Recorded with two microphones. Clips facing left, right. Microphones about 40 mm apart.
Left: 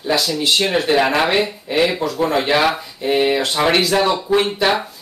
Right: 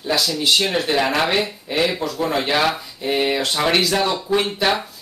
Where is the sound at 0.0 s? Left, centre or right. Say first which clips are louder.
Left 2 dB; centre.